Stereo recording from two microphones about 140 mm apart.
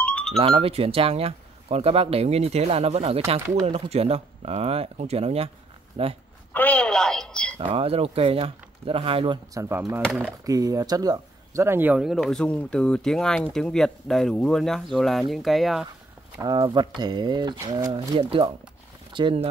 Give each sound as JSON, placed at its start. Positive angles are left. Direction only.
{"t": 0.0, "sound": "music", "side_deg": 5}
{"t": 0.4, "sound": "speech", "side_deg": -45}
{"t": 6.5, "sound": "telephone", "side_deg": 10}
{"t": 7.6, "sound": "speech", "side_deg": -45}
{"t": 9.5, "sound": "speech", "side_deg": -20}
{"t": 16.5, "sound": "speech", "side_deg": -35}